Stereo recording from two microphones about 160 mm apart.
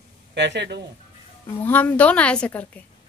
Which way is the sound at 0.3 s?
90° right.